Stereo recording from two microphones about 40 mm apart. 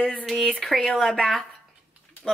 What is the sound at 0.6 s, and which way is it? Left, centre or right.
Speech, centre.